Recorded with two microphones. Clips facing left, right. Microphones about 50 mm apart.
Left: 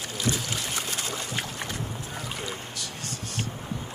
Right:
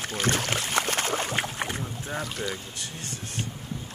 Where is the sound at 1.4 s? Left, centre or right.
Right.